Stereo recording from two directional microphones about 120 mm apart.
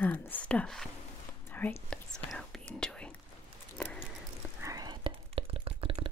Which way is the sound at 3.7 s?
10° left (ahead or behind).